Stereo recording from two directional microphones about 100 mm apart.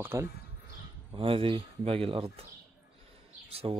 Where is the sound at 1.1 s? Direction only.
65° right (ahead or behind).